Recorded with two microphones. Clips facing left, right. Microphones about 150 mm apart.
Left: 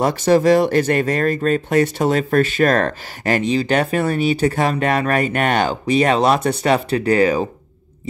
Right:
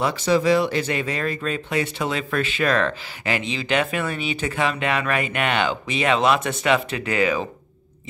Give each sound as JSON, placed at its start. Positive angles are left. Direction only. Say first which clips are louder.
{"t": 0.0, "sound": "speech", "louder": "left 5 dB", "side_deg": 45}